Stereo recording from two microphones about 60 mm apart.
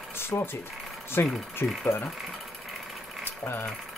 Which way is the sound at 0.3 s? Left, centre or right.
Left.